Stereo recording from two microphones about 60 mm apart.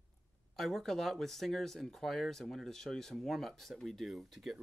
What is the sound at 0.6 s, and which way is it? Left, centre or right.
Speech, centre.